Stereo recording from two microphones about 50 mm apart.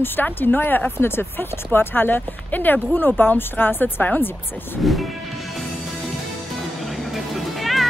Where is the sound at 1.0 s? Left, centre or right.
Left.